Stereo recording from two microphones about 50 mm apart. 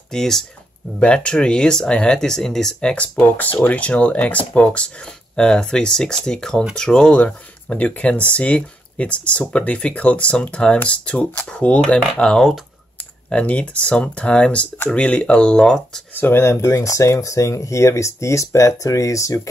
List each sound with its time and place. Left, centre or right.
0.1 s speech: centre
0.9 s speech: left
2.9 s speech: left; by 12.5 s centre
13.3 s speech: left
16.1 s speech: left
16.3 s speech: left